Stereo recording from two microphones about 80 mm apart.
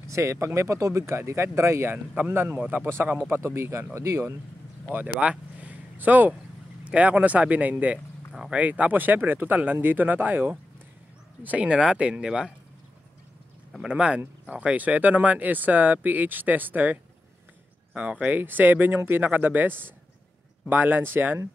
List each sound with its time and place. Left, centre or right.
0.1 s speech: right
4.9 s speech: centre
8.3 s speech: centre
8.5 s speech: centre
13.7 s speech: centre